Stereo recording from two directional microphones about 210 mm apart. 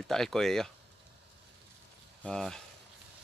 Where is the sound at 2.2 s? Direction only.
5° left (ahead or behind).